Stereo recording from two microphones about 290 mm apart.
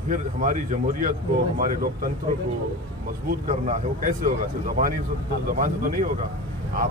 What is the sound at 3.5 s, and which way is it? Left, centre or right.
Speech, right.